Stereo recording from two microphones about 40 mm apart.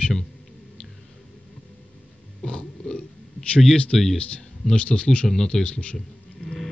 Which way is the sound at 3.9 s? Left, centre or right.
Centre.